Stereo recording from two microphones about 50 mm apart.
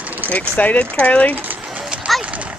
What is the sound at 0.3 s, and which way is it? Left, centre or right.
Speech, left.